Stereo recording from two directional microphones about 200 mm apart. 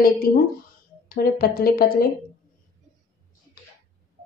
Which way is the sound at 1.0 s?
45° left (ahead or behind).